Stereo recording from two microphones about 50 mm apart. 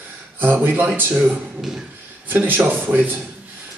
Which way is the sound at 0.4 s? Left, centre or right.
Right.